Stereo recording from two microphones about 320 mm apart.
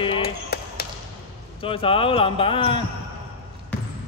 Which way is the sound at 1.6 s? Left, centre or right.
Centre.